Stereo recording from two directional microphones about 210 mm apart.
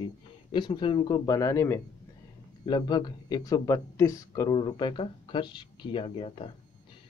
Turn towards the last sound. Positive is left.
turn(degrees=25)  # may be behind; listen again after turning